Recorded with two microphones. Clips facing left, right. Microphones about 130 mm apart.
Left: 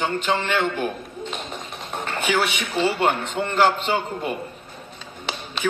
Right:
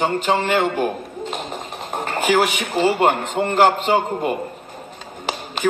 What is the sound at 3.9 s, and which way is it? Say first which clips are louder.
Speech: right 6 dB; 60° right (ahead or behind).